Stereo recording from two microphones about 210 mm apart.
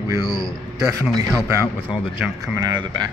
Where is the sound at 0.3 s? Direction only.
Centre (ahead or behind).